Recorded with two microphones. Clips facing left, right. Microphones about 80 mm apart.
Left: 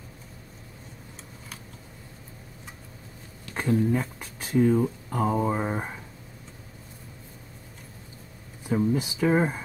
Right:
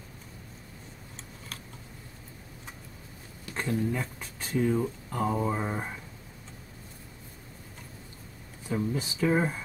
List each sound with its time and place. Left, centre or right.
3.5 s speech: centre
4.2 s speech: centre
8.6 s speech: centre